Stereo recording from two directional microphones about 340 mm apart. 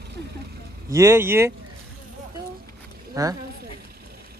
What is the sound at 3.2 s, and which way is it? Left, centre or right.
Speech, centre.